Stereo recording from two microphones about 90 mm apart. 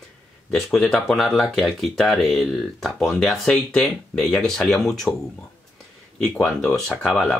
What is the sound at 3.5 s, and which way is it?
Speech, 15° left (ahead or behind).